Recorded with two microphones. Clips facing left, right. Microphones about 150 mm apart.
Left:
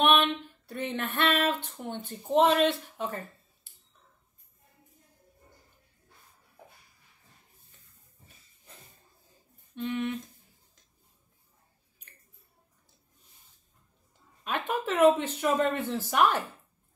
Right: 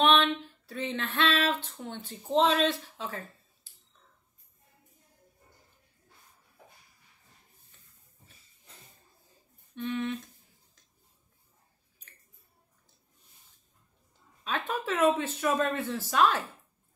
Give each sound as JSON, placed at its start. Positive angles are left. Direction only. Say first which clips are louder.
{"t": 0.0, "sound": "a sound", "louder": "even", "side_deg": 10}
{"t": 0.7, "sound": "speech", "louder": "even", "side_deg": 15}
{"t": 9.8, "sound": "speech", "louder": "left 1 dB", "side_deg": 15}
{"t": 14.4, "sound": "speech", "louder": "left 2 dB", "side_deg": 15}